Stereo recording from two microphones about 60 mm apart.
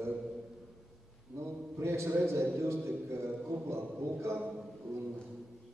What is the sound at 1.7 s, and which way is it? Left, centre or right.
A man's voice, right.